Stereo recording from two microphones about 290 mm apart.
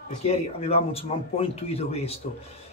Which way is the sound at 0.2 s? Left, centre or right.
Left.